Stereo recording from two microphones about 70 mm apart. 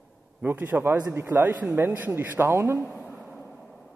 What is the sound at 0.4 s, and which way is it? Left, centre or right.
A man's voice, right.